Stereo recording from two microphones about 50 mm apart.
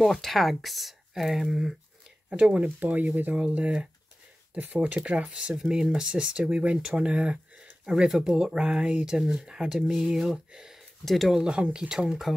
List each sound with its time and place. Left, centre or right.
0.0 s speech: centre
2.2 s speech: right
3.3 s speech: right
7.8 s speech: centre
11.4 s speech: centre
11.9 s speech: centre